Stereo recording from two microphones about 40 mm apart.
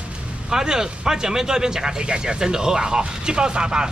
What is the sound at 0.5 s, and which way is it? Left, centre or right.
Speech, centre.